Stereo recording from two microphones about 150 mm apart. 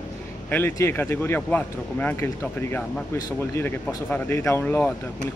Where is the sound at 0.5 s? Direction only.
15° left (ahead or behind).